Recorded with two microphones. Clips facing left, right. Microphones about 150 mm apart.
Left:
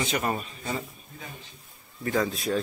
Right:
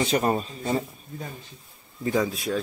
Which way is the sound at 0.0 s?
30° right (ahead or behind).